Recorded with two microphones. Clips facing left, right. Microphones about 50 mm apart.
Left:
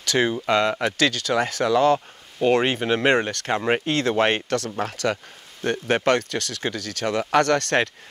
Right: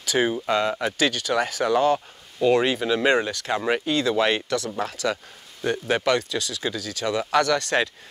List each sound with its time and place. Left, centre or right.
0.0 s a sound: left
0.3 s speech: left
3.8 s speech: left